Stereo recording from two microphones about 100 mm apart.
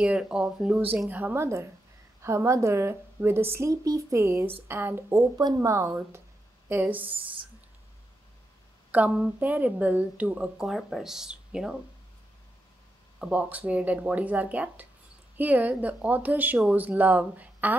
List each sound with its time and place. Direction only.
0.0 s speech: 10° right (ahead or behind)
1.1 s speech: 20° right (ahead or behind)
6.7 s speech: 20° right (ahead or behind)
8.9 s speech: 15° right (ahead or behind)
13.2 s speech: 15° right (ahead or behind)